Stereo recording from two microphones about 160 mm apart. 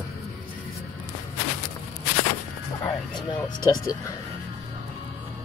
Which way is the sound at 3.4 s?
25° left (ahead or behind).